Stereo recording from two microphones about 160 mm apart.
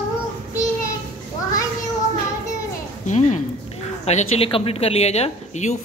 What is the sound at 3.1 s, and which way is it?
A woman's voice, 45° left (ahead or behind).